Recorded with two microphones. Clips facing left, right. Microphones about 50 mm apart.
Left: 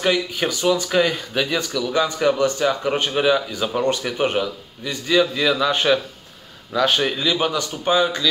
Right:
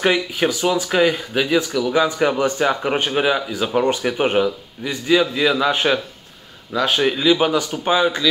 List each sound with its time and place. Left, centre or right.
0.0 s speech: centre